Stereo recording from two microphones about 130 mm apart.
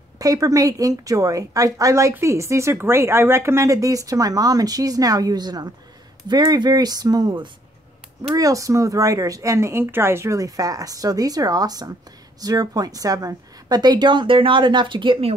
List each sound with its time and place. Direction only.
0.2 s a woman's voice: 25° right (ahead or behind); by 15.3 s 45° right (ahead or behind)